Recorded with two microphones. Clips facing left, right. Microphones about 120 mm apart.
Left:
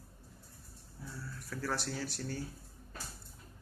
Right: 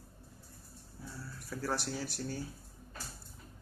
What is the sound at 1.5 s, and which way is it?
Speech, 15° right (ahead or behind).